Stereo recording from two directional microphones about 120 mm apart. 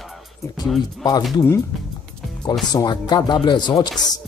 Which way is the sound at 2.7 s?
40° left (ahead or behind).